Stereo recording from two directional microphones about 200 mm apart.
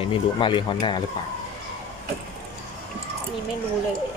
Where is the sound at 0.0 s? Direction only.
25° left (ahead or behind).